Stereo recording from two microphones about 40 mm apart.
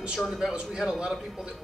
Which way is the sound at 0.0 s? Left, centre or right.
Centre.